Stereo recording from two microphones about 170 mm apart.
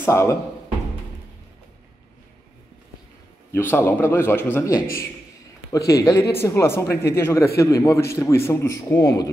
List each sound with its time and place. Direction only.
0.0 s speech: 15° left (ahead or behind)
3.5 s speech: 15° left (ahead or behind)